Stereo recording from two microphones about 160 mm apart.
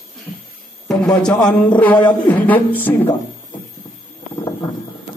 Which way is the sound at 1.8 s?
10° left (ahead or behind).